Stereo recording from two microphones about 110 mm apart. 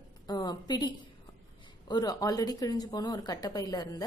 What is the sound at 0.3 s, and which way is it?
Speech, 40° left (ahead or behind).